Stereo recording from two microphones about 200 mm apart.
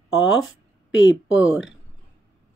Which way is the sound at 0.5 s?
65° left (ahead or behind).